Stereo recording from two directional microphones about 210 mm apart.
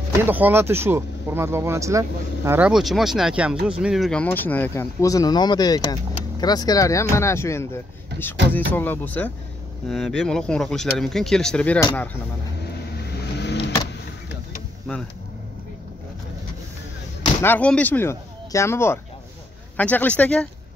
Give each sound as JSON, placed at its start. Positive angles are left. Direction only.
{"t": 0.3, "sound": "speech", "side_deg": -10}
{"t": 12.6, "sound": "vehicle", "side_deg": 50}
{"t": 17.4, "sound": "speech", "side_deg": 10}